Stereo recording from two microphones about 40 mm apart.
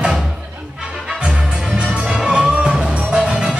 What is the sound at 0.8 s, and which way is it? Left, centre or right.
Music, centre.